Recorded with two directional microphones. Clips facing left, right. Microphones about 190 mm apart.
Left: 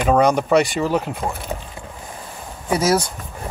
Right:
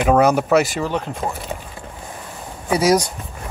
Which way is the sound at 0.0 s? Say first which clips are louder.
Right 1 dB; 5° right (ahead or behind).